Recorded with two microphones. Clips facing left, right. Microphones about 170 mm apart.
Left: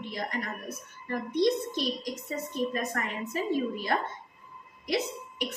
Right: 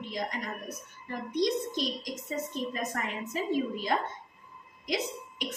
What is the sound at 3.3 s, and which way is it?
Speech, 20° right (ahead or behind).